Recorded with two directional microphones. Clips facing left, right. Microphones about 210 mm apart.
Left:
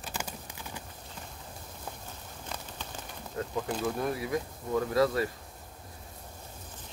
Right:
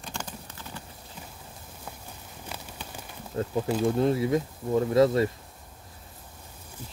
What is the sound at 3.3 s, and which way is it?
Speech, 25° right (ahead or behind).